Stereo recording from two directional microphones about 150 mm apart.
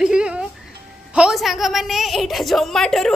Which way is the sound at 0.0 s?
5° right (ahead or behind).